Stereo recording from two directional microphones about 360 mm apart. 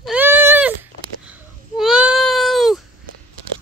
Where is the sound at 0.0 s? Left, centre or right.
Centre.